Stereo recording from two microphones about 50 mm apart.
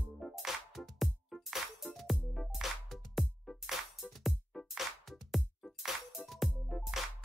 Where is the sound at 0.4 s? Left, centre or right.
Centre.